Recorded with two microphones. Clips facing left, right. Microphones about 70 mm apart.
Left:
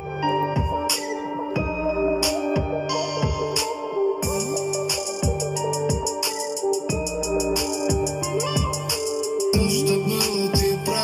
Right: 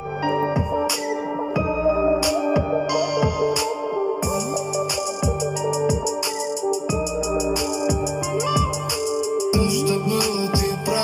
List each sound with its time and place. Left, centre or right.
0.2 s music: right
9.5 s music: right